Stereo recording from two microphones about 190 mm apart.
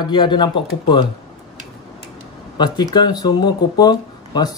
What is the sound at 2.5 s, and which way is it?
Speech, 20° left (ahead or behind).